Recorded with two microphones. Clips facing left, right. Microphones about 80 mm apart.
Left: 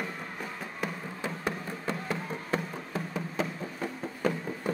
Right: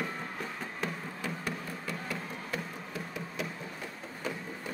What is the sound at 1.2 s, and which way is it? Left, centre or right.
Music, left.